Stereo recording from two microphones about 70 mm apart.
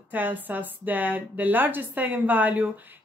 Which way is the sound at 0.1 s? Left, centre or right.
Right.